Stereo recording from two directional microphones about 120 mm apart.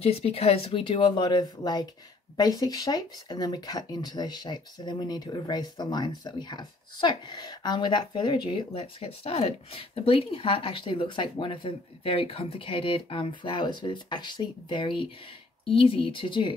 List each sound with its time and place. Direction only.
0.0 s speech: 60° left (ahead or behind); by 16.5 s 45° left (ahead or behind)